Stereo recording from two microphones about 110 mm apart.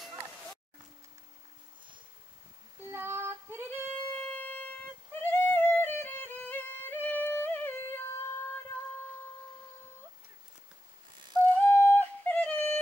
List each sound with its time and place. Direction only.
2.9 s female singing: 20° right (ahead or behind)
3.9 s siren: 15° left (ahead or behind)
5.2 s music: 15° left (ahead or behind)
11.5 s yodeling: 20° left (ahead or behind)